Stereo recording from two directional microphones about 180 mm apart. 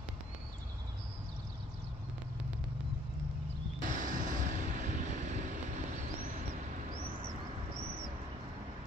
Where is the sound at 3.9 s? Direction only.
45° right (ahead or behind).